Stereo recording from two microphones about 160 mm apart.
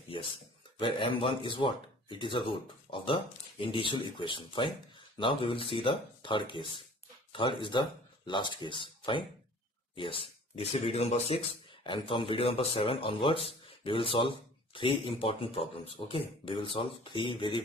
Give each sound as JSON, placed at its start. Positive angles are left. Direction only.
{"t": 0.7, "sound": "speech", "side_deg": 30}